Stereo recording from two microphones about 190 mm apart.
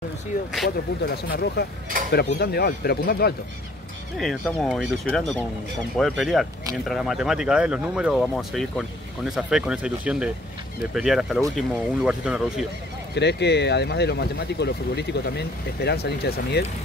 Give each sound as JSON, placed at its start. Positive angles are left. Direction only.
{"t": 1.0, "sound": "speech", "side_deg": 55}
{"t": 4.2, "sound": "speech", "side_deg": 0}
{"t": 13.1, "sound": "speech", "side_deg": 65}